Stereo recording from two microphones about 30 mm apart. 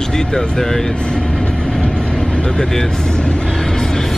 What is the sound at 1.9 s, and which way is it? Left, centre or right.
Vehicle, left.